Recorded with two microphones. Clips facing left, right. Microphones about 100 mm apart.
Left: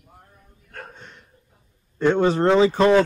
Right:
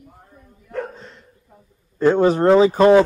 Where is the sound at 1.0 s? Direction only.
Centre (ahead or behind).